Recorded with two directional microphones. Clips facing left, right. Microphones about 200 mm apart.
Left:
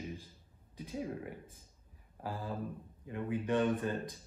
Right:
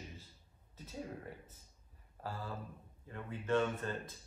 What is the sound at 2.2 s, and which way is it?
Speech, 15° left (ahead or behind).